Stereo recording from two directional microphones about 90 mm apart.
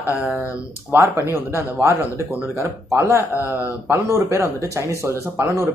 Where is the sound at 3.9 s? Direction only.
35° right (ahead or behind).